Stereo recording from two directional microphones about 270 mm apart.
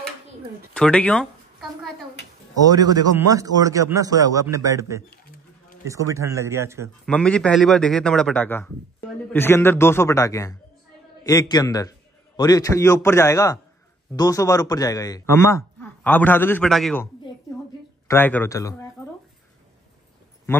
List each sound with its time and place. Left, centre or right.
0.7 s a man's voice: centre
2.7 s a man's voice: centre
7.1 s a man's voice: centre